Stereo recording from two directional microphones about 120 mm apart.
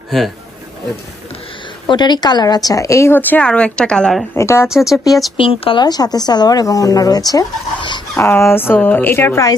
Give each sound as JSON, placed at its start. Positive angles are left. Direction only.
{"t": 1.9, "sound": "speech", "side_deg": 35}
{"t": 4.3, "sound": "speech", "side_deg": 25}
{"t": 4.6, "sound": "speech", "side_deg": -5}
{"t": 5.4, "sound": "speech", "side_deg": 50}
{"t": 8.2, "sound": "speech", "side_deg": 20}